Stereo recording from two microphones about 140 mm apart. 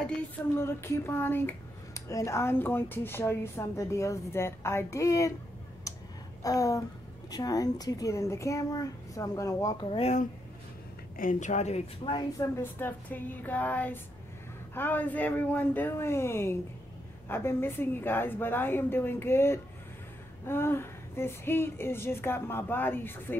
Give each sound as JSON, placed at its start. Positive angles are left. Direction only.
{"t": 0.6, "sound": "a woman's voice", "side_deg": 20}
{"t": 6.4, "sound": "a woman's voice", "side_deg": 25}
{"t": 9.8, "sound": "speech", "side_deg": 45}
{"t": 11.1, "sound": "a woman's voice", "side_deg": 65}
{"t": 12.0, "sound": "a woman's voice", "side_deg": 35}
{"t": 12.4, "sound": "speech", "side_deg": 15}